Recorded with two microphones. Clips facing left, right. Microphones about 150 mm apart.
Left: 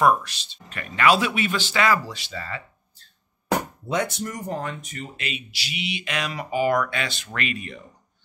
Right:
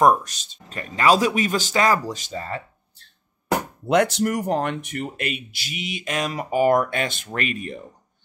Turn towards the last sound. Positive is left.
turn(degrees=-40)  # may be behind; listen again after turning